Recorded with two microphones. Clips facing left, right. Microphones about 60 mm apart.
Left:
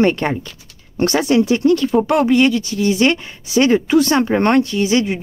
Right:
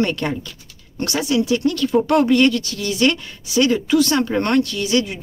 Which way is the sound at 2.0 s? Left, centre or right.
Centre.